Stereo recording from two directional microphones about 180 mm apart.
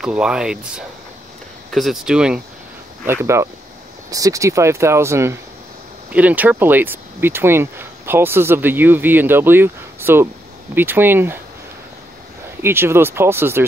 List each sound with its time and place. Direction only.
0.0 s speech: 5° right (ahead or behind)
12.6 s speech: 15° right (ahead or behind)